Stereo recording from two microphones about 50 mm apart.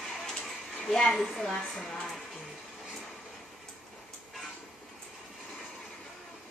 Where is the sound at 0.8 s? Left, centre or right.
Centre.